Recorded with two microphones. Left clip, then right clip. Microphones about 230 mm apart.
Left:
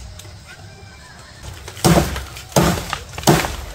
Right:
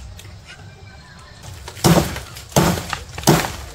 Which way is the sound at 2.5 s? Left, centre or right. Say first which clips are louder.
Left 1 dB; centre.